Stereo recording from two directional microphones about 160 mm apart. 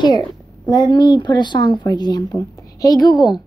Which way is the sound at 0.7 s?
25° left (ahead or behind).